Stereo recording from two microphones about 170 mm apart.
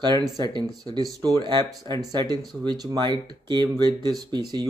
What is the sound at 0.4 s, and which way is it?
Speech, 25° right (ahead or behind).